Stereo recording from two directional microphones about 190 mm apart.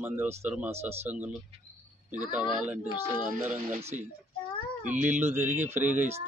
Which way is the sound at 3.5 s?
35° right (ahead or behind).